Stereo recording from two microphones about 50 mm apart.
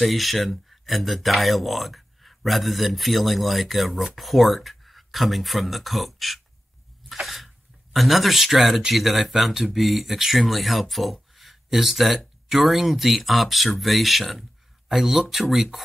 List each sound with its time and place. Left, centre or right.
0.0 s speech: centre
9.8 s speech: centre